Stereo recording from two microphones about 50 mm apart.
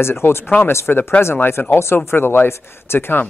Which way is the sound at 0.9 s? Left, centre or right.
Left.